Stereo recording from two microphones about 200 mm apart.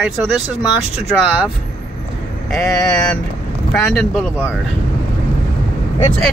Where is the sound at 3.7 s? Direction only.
5° left (ahead or behind).